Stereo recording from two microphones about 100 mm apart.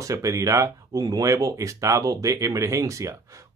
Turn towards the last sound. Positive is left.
turn(degrees=-35)  # may be behind; listen again after turning